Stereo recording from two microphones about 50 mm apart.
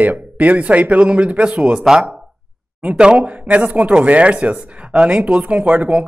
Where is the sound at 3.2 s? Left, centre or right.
Right.